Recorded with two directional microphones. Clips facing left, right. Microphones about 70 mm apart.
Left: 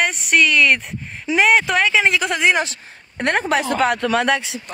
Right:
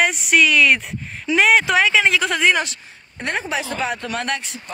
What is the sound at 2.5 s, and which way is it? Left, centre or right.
Speech, left.